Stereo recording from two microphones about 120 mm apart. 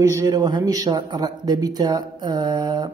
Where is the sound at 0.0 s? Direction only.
25° right (ahead or behind).